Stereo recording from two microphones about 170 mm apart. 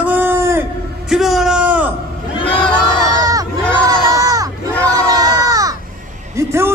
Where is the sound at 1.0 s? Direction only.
Centre (ahead or behind).